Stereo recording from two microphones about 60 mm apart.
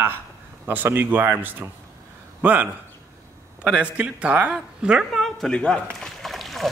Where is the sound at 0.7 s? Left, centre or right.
Right.